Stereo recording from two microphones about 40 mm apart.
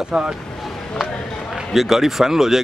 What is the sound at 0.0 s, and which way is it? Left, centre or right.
Speech, right.